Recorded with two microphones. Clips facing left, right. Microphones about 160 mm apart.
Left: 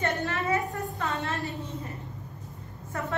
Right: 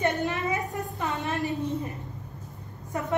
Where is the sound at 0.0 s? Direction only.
15° right (ahead or behind).